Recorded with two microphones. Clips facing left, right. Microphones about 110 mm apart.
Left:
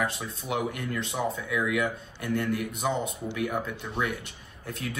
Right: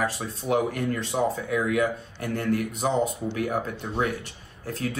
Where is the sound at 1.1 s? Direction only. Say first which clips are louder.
Right 4 dB; 30° right (ahead or behind).